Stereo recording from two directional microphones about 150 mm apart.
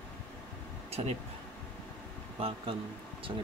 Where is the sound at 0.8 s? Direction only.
40° right (ahead or behind).